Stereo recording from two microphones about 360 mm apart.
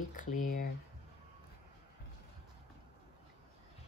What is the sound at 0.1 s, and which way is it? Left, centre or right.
Speech, left.